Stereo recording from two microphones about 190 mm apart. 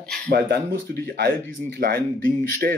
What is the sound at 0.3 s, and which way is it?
Speech, 55° right (ahead or behind).